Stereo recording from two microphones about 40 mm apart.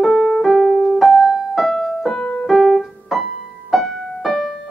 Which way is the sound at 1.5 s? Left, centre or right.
Centre.